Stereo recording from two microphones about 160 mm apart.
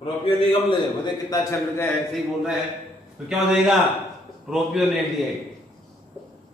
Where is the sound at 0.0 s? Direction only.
35° left (ahead or behind).